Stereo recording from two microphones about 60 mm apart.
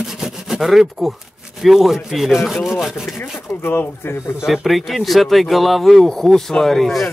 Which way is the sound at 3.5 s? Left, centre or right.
Left.